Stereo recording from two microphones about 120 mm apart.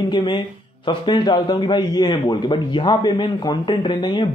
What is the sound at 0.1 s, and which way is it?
A man's voice, 40° left (ahead or behind).